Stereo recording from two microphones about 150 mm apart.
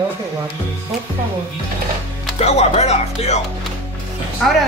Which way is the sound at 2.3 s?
45° left (ahead or behind).